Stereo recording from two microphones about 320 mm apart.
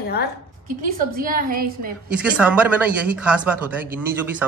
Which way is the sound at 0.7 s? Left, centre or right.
Right.